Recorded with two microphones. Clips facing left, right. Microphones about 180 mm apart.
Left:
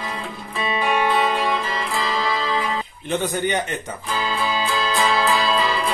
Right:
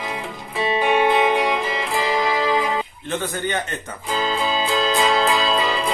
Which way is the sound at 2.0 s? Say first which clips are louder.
Right 4 dB; 15° right (ahead or behind).